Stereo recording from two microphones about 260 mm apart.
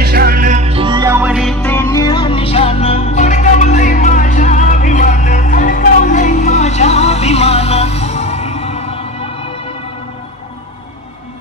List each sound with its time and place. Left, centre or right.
0.0 s music: right; by 9.0 s left